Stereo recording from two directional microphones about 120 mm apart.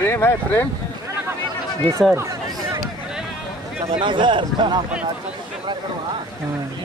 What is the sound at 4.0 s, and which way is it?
Speech, 40° right (ahead or behind).